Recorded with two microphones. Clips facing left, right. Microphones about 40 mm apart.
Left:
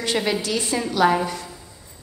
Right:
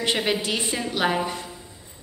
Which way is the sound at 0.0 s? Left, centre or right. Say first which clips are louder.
Left 1 dB; right.